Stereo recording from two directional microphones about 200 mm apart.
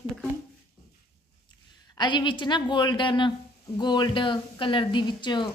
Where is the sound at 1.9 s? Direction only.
20° left (ahead or behind).